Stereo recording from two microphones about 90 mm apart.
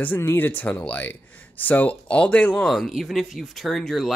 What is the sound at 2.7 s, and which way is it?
Speech, centre (ahead or behind).